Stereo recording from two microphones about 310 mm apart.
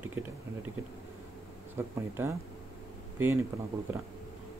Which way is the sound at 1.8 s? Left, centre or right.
Centre.